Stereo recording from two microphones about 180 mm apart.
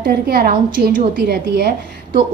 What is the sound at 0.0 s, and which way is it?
A woman's voice, 60° right (ahead or behind).